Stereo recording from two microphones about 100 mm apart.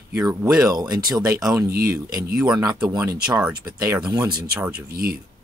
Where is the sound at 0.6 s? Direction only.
40° right (ahead or behind).